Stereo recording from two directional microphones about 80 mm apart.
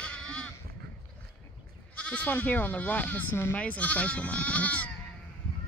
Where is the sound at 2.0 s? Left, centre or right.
Centre.